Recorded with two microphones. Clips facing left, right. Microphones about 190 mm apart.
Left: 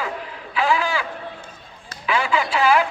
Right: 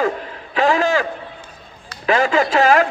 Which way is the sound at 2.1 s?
45° right (ahead or behind).